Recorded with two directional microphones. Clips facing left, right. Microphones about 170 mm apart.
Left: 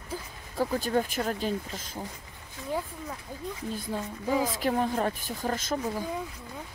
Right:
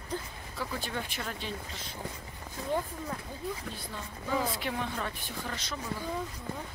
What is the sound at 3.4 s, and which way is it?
Speech, 5° right (ahead or behind).